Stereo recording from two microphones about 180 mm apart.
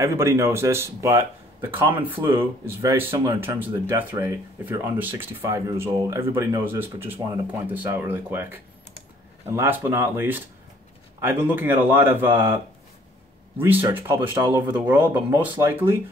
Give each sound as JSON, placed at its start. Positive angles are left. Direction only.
{"t": 0.0, "sound": "speech", "side_deg": -15}
{"t": 13.6, "sound": "speech", "side_deg": -10}